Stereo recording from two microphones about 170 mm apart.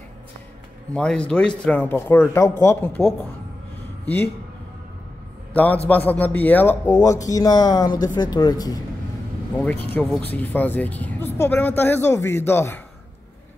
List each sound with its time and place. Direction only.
0.9 s a woman's voice: 5° left (ahead or behind)
5.5 s a man's voice: 10° left (ahead or behind)
9.6 s a woman's voice: 10° left (ahead or behind)